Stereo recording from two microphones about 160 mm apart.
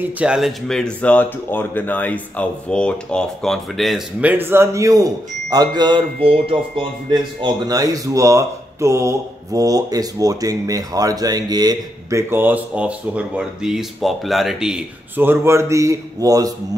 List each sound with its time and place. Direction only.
0.0 s speech: 5° right (ahead or behind)